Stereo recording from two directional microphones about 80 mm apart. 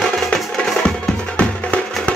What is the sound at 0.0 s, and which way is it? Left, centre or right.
Music, centre.